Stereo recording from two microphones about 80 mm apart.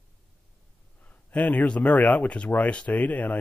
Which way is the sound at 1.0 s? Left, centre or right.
Centre.